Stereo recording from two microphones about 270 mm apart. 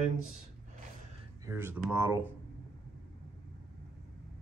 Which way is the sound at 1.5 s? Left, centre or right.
Centre.